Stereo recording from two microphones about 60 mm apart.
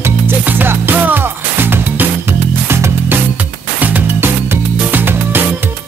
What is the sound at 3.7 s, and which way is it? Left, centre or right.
Music, right.